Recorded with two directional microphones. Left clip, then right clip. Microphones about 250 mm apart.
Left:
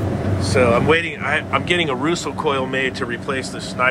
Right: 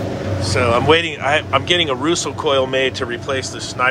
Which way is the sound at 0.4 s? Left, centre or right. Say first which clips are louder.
Even; centre.